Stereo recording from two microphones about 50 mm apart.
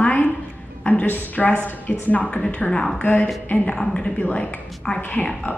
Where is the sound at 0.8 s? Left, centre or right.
Left.